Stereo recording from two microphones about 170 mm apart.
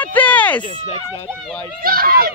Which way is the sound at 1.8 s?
60° right (ahead or behind).